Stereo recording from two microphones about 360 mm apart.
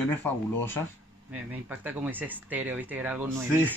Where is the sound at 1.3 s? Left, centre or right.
Centre.